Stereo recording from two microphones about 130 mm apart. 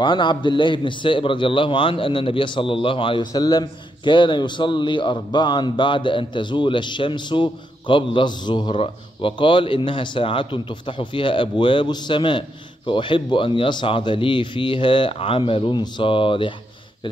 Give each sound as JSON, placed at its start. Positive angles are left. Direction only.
{"t": 0.0, "sound": "a man's voice", "side_deg": 40}